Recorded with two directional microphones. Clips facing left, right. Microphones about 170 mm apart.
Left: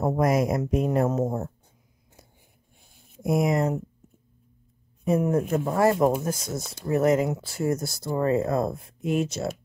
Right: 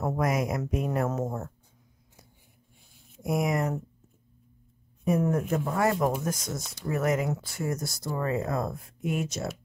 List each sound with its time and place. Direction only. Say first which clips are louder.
0.0 s speech: left 5 dB; 30° left (ahead or behind)
3.2 s speech: left 4 dB; 25° left (ahead or behind)
5.3 s speech: left 4 dB; 30° left (ahead or behind)